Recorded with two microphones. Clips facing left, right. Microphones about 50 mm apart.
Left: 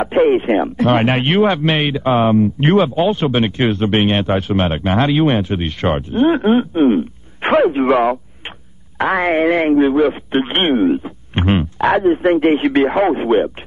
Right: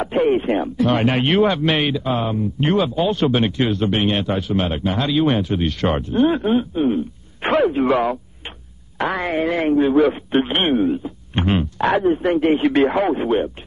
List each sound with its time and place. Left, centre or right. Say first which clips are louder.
0.0 s speech: left 4 dB; left
0.7 s speech: left 3 dB; left
1.2 s speech: left 2 dB; left
2.0 s speech: left 8 dB; left
3.6 s speech: left 4 dB; left
6.4 s speech: left 5 dB; left
7.4 s speech: left 4 dB; left
9.8 s speech: left 2 dB; centre
10.3 s speech: left 2 dB; left
11.8 s speech: left 4 dB; left
12.7 s speech: left 3 dB; centre